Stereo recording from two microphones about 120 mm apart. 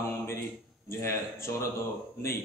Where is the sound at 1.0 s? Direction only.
20° left (ahead or behind).